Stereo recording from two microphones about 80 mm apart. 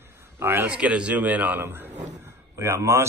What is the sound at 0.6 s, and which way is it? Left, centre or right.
Speech, centre.